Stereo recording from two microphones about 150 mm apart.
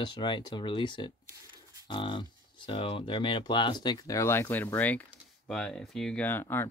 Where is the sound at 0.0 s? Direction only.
30° left (ahead or behind).